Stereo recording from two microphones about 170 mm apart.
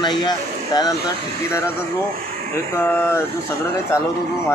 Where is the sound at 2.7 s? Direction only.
15° left (ahead or behind).